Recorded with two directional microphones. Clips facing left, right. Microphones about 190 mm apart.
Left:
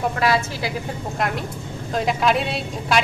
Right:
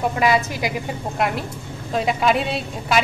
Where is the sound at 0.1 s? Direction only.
15° right (ahead or behind).